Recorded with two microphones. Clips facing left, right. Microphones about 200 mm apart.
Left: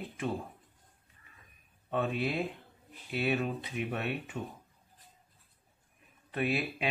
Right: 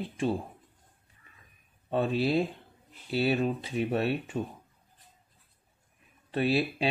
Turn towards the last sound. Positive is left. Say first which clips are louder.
# right 5 dB
turn(degrees=-30)  # may be behind; listen again after turning